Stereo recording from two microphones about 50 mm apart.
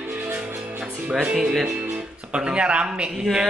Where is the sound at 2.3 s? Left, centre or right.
Centre.